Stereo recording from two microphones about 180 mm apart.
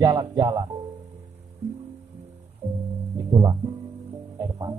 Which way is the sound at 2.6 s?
15° right (ahead or behind).